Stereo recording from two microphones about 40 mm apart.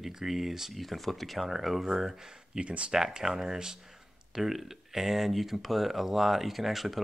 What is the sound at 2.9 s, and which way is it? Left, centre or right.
Speech, centre.